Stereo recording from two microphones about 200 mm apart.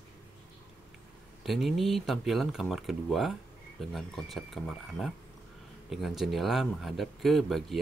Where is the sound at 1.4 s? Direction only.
Centre (ahead or behind).